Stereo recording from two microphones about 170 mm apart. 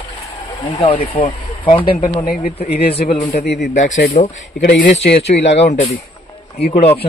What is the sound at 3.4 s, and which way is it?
Speech, 80° left.